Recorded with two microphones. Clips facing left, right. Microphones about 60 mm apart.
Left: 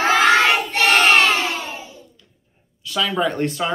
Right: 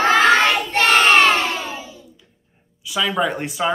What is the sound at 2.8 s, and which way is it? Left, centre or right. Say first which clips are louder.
Speech: even; centre.